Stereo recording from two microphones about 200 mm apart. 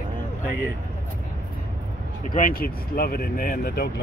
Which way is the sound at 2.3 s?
45° left (ahead or behind).